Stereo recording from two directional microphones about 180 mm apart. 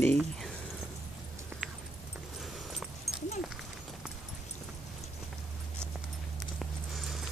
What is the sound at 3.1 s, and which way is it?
Dog, 35° left (ahead or behind).